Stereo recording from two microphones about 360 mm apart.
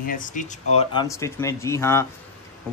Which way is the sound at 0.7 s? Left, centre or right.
Centre.